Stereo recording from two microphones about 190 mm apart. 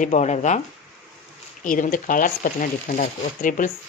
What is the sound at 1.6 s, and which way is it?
Speech, 45° left (ahead or behind).